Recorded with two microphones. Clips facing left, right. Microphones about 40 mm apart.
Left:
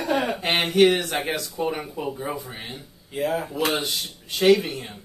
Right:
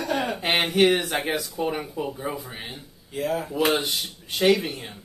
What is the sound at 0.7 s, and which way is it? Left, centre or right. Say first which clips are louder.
Speech: left 3 dB; centre.